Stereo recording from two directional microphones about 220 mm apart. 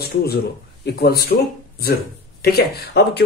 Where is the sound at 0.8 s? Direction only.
45° left (ahead or behind).